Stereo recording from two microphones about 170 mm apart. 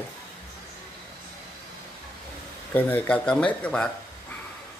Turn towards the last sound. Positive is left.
turn(degrees=5)  # may be behind; listen again after turning